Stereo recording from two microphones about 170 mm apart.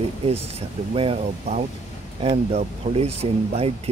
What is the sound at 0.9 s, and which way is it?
Speech, 35° right (ahead or behind).